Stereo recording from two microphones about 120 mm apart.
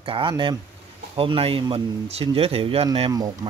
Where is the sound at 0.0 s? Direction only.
45° right (ahead or behind).